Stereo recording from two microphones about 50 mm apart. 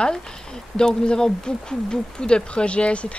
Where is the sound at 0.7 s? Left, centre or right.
Centre.